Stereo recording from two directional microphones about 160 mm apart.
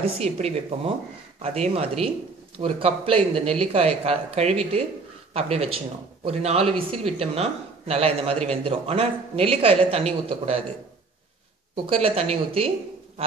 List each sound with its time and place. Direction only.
0.0 s speech: 40° right (ahead or behind)
11.7 s speech: 35° right (ahead or behind)